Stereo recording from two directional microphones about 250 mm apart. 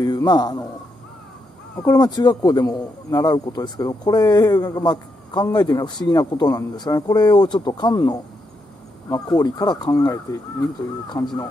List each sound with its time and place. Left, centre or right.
0.0 s speech: centre
1.8 s a man's voice: centre